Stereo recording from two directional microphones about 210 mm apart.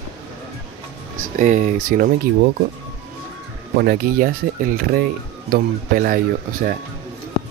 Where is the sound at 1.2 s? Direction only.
35° right (ahead or behind).